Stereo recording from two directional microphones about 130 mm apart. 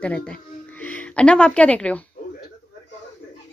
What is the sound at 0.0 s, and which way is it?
Speech, 10° left (ahead or behind).